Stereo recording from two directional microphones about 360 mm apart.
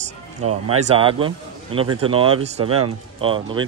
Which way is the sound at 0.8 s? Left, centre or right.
Centre.